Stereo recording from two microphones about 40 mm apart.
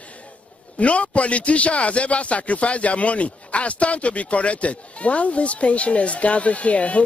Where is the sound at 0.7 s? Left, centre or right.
Left.